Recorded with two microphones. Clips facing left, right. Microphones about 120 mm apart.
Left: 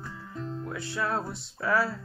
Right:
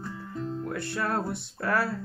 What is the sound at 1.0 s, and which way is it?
Music, 60° right (ahead or behind).